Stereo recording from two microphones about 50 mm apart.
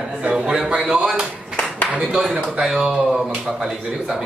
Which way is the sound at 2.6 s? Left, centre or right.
Centre.